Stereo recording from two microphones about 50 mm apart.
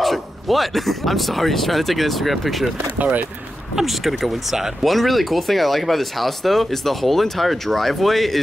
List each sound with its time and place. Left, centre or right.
0.0 s speech: centre
3.0 s speech: right
3.7 s speech: centre